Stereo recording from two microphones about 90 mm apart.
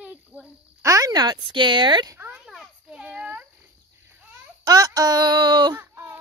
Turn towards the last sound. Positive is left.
turn(degrees=-25)  # may be behind; listen again after turning